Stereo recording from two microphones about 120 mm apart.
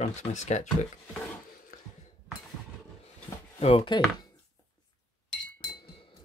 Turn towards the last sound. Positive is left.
turn(degrees=40)  # may be behind; listen again after turning